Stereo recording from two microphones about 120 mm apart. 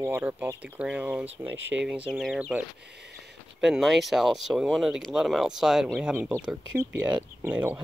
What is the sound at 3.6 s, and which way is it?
Speech, centre (ahead or behind).